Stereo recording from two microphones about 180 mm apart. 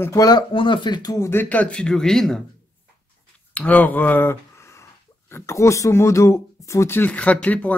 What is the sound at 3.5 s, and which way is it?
Speech, 10° left (ahead or behind).